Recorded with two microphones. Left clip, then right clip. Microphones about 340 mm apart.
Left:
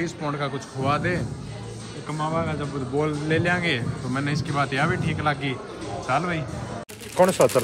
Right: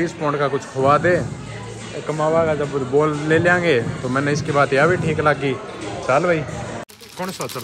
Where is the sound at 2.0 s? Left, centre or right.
Right.